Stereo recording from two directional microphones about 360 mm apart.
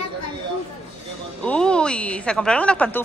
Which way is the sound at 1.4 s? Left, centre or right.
Centre.